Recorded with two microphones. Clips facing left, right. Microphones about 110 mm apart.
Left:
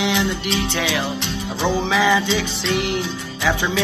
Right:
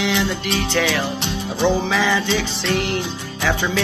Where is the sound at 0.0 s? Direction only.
20° left (ahead or behind).